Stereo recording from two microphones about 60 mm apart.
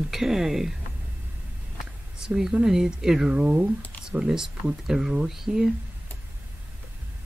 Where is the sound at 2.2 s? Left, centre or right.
Centre.